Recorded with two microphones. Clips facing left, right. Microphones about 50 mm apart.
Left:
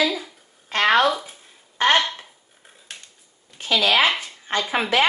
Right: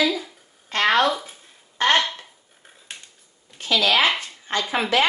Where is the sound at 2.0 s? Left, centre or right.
Centre.